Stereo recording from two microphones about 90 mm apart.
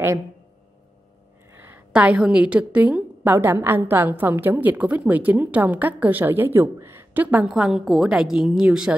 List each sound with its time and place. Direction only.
1.5 s a sound: 25° right (ahead or behind)
1.9 s a woman's voice: 10° right (ahead or behind)
7.4 s a woman's voice: 5° right (ahead or behind)